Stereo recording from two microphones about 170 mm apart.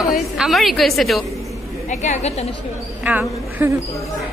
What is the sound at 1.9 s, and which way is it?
Speech, 45° left (ahead or behind).